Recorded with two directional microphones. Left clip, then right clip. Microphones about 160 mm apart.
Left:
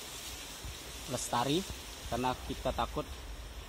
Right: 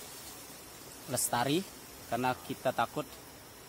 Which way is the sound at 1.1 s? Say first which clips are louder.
Right 1 dB; 15° right (ahead or behind).